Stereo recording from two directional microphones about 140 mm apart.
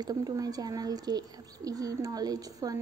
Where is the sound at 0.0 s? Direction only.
25° right (ahead or behind).